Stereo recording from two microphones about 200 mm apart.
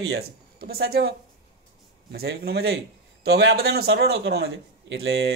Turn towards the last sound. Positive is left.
turn(degrees=-55)  # may be behind; listen again after turning